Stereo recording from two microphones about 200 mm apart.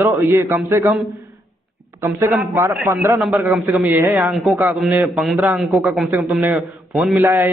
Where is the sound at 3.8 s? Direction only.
10° right (ahead or behind).